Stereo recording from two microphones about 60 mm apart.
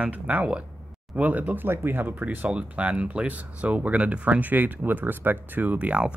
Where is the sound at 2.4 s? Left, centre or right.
Right.